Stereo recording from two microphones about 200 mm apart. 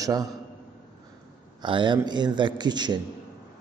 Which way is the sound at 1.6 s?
25° right (ahead or behind).